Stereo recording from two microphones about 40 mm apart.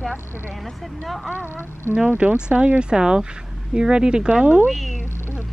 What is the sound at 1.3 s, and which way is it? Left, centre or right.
Speech, left.